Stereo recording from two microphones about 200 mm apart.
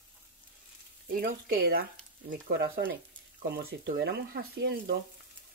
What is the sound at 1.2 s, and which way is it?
Speech, 50° right (ahead or behind).